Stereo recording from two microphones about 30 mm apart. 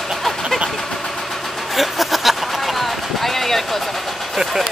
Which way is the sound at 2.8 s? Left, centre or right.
Centre.